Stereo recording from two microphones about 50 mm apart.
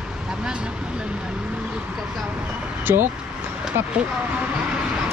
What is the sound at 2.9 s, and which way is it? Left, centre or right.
Speech, right.